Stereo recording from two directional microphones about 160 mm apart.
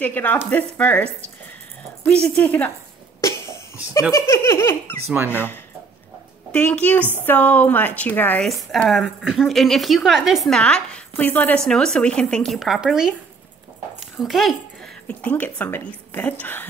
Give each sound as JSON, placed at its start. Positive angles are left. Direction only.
{"t": 0.0, "sound": "a woman's voice", "side_deg": 10}
{"t": 4.1, "sound": "a woman's voice", "side_deg": 15}
{"t": 14.2, "sound": "a woman's voice", "side_deg": 0}